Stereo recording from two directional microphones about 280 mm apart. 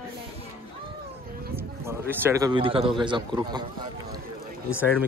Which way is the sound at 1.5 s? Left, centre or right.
Centre.